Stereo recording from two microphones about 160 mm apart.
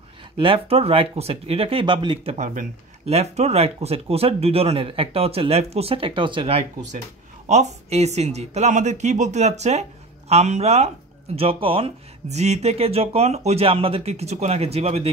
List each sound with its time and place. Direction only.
0.4 s speech: 35° right (ahead or behind)
2.3 s speech: 45° right (ahead or behind)